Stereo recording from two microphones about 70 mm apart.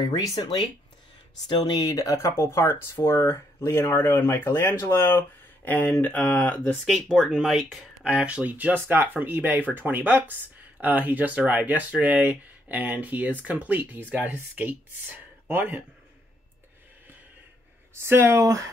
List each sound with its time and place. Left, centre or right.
0.0 s speech: left
1.8 s speech: left
7.0 s speech: centre
8.0 s speech: centre
18.0 s speech: right
18.4 s speech: right